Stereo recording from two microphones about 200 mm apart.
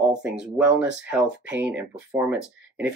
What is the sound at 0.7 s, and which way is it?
Speech, 5° right (ahead or behind).